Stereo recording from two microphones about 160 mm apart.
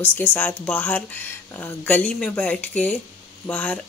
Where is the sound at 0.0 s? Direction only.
10° left (ahead or behind).